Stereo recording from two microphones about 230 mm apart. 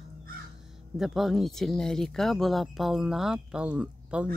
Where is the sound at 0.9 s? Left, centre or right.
Centre.